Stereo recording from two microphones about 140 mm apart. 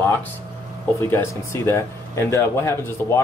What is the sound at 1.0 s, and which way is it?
Speech, 15° left (ahead or behind).